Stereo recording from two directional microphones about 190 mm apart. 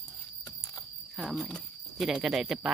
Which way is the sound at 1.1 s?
Centre (ahead or behind).